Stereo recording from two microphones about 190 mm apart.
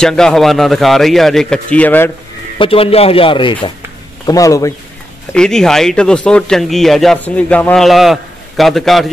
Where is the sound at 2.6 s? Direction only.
30° left (ahead or behind).